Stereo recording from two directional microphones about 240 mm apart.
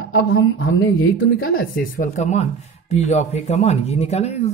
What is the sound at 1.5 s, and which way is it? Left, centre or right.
Speech, left.